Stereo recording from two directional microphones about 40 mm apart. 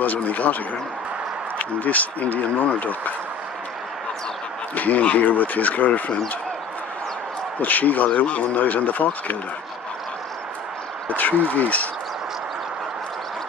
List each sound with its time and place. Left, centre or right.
0.0 s speech: left
1.6 s speech: left
4.7 s speech: left
7.6 s speech: left
11.4 s speech: left